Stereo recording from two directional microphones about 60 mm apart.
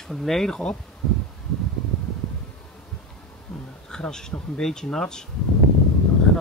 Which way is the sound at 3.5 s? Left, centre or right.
Centre.